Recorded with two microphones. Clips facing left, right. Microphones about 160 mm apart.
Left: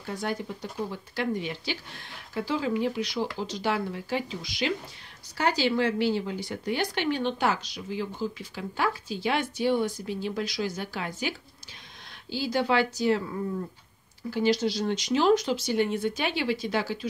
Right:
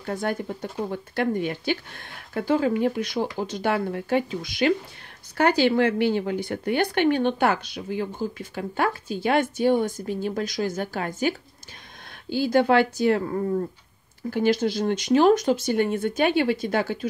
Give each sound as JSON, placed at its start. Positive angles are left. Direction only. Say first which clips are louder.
{"t": 0.0, "sound": "speech", "louder": "right 4 dB", "side_deg": -50}